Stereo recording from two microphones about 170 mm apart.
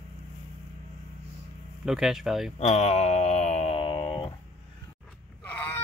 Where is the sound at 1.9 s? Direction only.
Centre (ahead or behind).